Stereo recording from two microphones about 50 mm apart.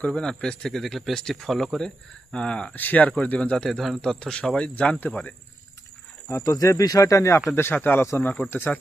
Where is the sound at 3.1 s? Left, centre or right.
Left.